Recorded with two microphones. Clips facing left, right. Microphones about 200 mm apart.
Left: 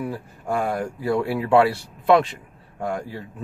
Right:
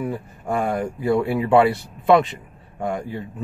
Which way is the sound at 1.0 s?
20° right (ahead or behind).